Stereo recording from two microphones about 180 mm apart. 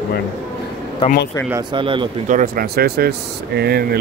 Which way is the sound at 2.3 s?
50° right (ahead or behind).